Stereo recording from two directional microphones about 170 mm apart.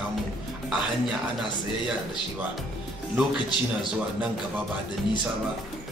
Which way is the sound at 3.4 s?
25° left (ahead or behind).